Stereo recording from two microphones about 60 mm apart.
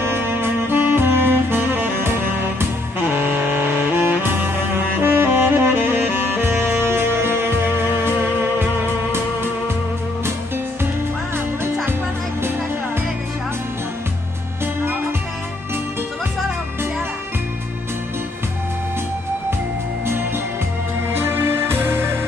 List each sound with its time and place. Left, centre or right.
0.0 s saxophone: right
5.0 s music: right
11.3 s music: right
21.1 s music: right